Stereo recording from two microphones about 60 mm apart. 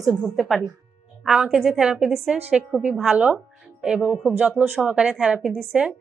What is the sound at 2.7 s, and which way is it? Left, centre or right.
A woman's voice, right.